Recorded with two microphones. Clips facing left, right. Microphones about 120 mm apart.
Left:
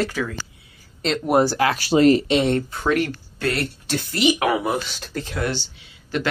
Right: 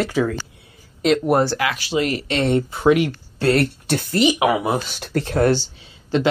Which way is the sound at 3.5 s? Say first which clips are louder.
Right 6 dB; 55° right (ahead or behind).